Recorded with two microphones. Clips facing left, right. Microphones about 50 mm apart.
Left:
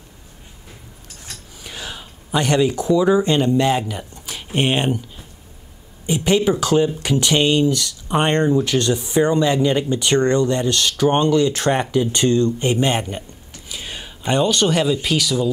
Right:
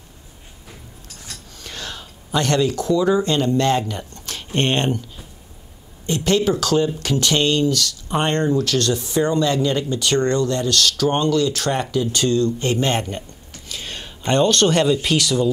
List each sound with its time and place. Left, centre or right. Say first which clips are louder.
1.6 s speech: even; centre